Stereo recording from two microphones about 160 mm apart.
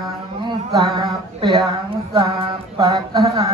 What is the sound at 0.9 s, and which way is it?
Speech, 30° right (ahead or behind).